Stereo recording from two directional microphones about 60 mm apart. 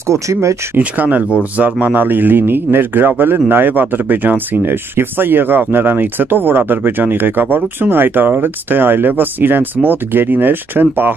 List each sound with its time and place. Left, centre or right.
0.1 s speech: right
0.7 s speech: right